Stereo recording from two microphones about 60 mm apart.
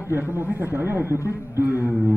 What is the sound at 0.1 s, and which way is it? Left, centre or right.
A man's voice, right.